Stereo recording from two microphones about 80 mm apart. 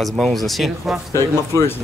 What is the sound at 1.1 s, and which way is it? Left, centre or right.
Speech, left.